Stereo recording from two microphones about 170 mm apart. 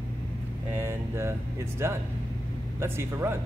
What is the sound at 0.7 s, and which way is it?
Speech, 15° right (ahead or behind).